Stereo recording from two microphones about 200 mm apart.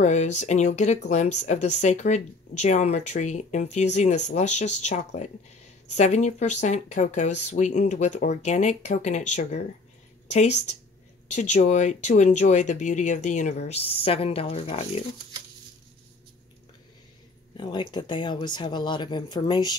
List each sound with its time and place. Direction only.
0.0 s speech: 35° left (ahead or behind)
11.2 s speech: 35° left (ahead or behind)
17.6 s speech: 20° left (ahead or behind)